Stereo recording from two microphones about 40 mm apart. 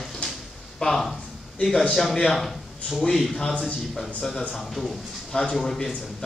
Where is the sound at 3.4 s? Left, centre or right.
Left.